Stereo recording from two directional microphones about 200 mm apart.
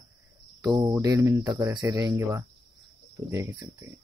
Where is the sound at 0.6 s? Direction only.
20° right (ahead or behind).